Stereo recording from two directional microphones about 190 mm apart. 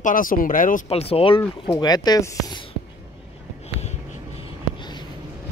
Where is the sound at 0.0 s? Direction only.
45° left (ahead or behind).